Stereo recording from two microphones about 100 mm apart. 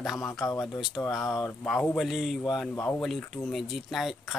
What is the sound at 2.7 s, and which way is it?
Speech, 20° left (ahead or behind).